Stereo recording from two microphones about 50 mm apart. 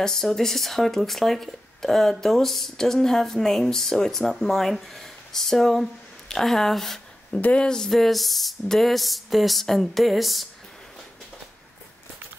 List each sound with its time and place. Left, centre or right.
0.0 s speech: centre
7.3 s speech: left
7.9 s speech: centre